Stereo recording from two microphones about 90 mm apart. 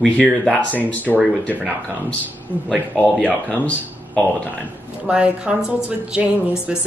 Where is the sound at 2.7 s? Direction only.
15° left (ahead or behind).